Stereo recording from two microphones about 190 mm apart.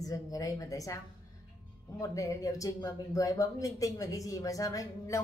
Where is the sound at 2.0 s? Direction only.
15° left (ahead or behind).